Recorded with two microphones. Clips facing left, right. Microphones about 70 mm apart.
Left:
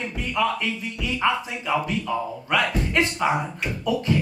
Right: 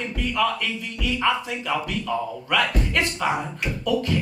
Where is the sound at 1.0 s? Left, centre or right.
Centre.